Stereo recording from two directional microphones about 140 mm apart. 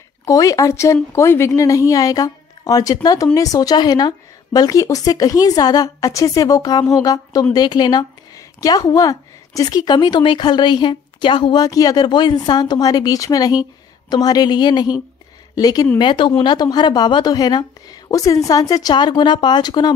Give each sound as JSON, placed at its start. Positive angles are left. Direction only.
{"t": 0.2, "sound": "a woman's voice", "side_deg": 25}